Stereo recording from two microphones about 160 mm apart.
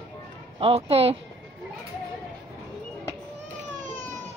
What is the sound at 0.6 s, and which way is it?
Speech, 40° right (ahead or behind).